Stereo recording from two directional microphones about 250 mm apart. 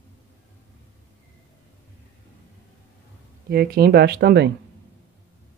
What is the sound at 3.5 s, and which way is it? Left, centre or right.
Speech, right.